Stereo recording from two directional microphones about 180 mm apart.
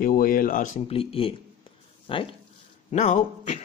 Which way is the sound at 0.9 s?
30° left (ahead or behind).